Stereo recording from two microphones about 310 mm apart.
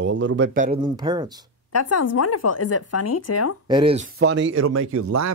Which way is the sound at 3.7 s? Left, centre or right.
Centre.